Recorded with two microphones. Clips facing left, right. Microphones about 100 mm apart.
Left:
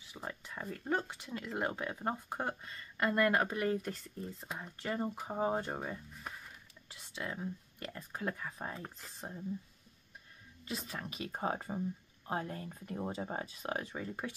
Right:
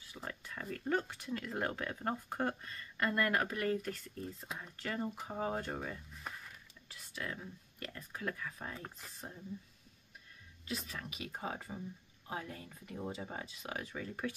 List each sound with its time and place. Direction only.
0.1 s speech: 15° left (ahead or behind)
10.7 s speech: 35° left (ahead or behind)